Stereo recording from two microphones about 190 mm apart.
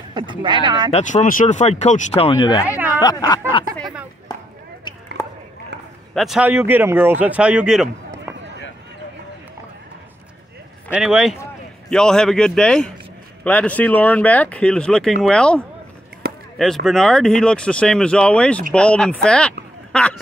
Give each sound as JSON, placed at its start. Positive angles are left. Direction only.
{"t": 0.1, "sound": "speech", "side_deg": -25}
{"t": 0.9, "sound": "speech", "side_deg": 40}
{"t": 4.3, "sound": "chop", "side_deg": 20}
{"t": 6.1, "sound": "a man's voice", "side_deg": 0}
{"t": 10.9, "sound": "speech", "side_deg": -5}